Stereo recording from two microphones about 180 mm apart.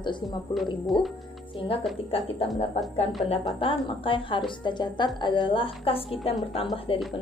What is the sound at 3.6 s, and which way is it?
A woman's voice, 30° left (ahead or behind).